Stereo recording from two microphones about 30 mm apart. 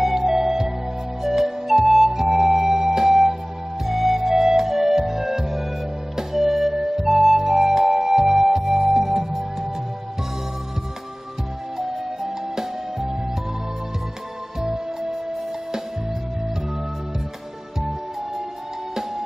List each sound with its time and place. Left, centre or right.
0.0 s music: centre
1.2 s flute: centre
3.8 s music: centre
11.9 s music: centre
14.6 s music: centre